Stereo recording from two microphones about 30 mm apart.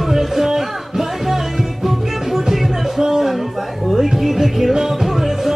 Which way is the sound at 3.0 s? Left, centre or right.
Centre.